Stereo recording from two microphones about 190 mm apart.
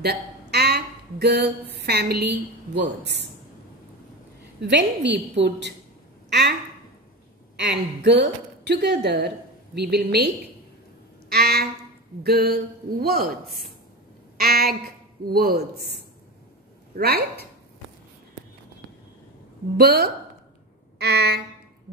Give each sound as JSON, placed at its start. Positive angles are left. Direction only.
{"t": 0.0, "sound": "a sound", "side_deg": -60}
{"t": 1.8, "sound": "a woman's voice", "side_deg": -60}
{"t": 4.6, "sound": "a woman's voice", "side_deg": -65}
{"t": 7.5, "sound": "a woman's voice", "side_deg": -65}
{"t": 11.2, "sound": "music", "side_deg": -60}
{"t": 12.2, "sound": "a woman's voice", "side_deg": -55}
{"t": 19.8, "sound": "a woman's voice", "side_deg": -55}